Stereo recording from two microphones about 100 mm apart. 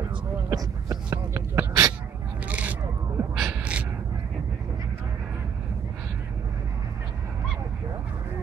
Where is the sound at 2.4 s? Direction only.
15° right (ahead or behind).